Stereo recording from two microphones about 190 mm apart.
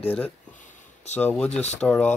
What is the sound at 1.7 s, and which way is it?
Speech, 5° left (ahead or behind).